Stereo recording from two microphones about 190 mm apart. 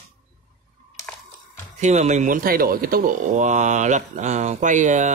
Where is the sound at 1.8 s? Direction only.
35° right (ahead or behind).